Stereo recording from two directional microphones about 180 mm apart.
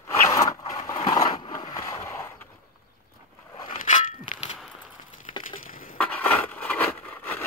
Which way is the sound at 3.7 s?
45° left (ahead or behind).